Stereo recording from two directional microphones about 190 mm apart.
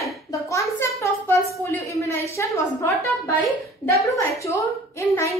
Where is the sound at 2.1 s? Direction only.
15° left (ahead or behind).